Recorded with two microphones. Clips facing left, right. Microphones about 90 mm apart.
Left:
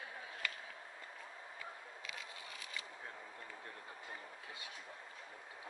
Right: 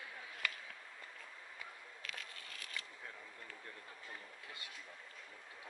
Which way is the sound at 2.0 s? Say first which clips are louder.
Even; 15° left (ahead or behind).